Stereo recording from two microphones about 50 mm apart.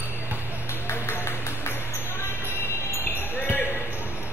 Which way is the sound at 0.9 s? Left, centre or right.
Left.